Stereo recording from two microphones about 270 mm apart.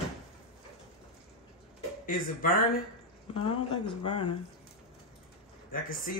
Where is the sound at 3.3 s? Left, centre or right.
Centre.